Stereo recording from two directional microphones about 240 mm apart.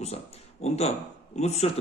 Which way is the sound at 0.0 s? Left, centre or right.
Left.